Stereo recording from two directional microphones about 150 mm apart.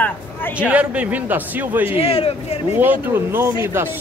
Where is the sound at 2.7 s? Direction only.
15° right (ahead or behind).